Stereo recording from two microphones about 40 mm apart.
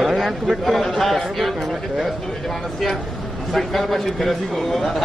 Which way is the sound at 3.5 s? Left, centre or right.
Centre.